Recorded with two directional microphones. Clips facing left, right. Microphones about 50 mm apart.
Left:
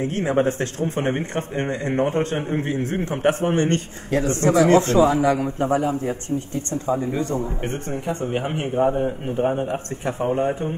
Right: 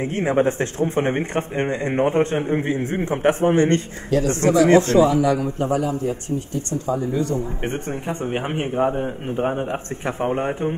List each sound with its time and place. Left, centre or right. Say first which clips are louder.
0.0 s speech: right 1 dB; right
3.7 s a man's voice: right 2 dB; left
7.6 s speech: right 1 dB; right
10.0 s speech: left 1 dB; right